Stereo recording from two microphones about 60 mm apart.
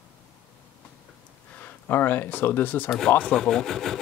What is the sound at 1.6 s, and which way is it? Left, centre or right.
Speech, left.